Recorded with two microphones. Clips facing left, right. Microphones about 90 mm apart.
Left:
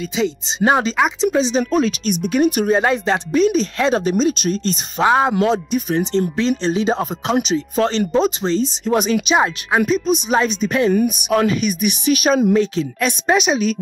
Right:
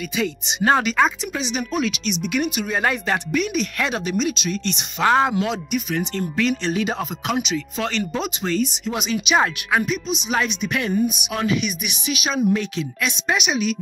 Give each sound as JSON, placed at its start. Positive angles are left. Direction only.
{"t": 0.1, "sound": "speech", "side_deg": 30}
{"t": 2.7, "sound": "speech", "side_deg": 25}
{"t": 5.0, "sound": "speech", "side_deg": 15}
{"t": 5.4, "sound": "speech", "side_deg": 35}
{"t": 8.8, "sound": "speech", "side_deg": 45}
{"t": 9.4, "sound": "speech", "side_deg": 20}
{"t": 9.8, "sound": "speech", "side_deg": 40}